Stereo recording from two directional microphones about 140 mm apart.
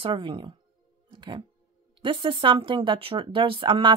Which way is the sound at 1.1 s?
35° right (ahead or behind).